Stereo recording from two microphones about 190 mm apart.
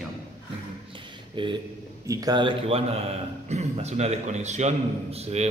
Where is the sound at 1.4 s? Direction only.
25° right (ahead or behind).